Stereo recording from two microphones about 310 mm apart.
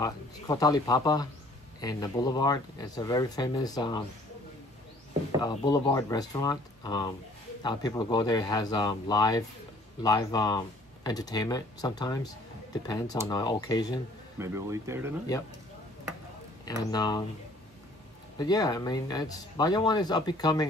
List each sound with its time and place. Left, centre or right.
0.0 s speech: centre
5.4 s speech: centre
14.4 s speech: centre
16.6 s speech: centre
18.4 s speech: centre